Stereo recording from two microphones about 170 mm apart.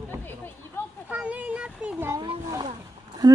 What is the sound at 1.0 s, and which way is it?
Speech, 10° right (ahead or behind).